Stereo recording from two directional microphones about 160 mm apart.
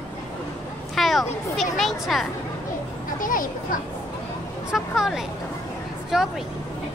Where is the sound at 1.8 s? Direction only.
Centre (ahead or behind).